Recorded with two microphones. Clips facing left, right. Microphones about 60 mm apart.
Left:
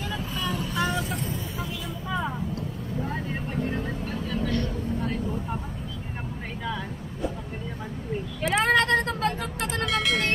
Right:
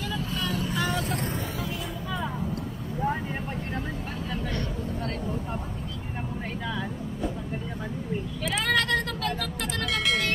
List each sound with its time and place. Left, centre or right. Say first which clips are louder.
0.4 s vehicle: left 2 dB; centre
0.7 s vehicle: left 3 dB; left
8.6 s vehicle: left 3 dB; left
9.9 s vehicle: left 1 dB; centre